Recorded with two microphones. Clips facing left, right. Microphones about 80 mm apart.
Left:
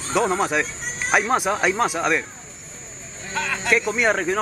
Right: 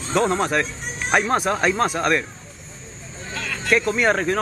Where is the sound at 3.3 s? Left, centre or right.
Left.